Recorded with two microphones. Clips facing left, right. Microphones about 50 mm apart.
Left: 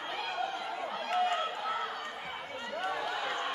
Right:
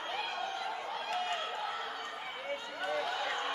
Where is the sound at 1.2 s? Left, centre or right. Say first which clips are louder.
Left 4 dB; centre.